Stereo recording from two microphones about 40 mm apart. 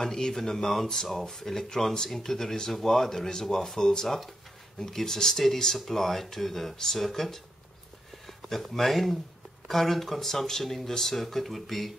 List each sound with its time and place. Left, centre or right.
0.0 s speech: centre
8.7 s speech: centre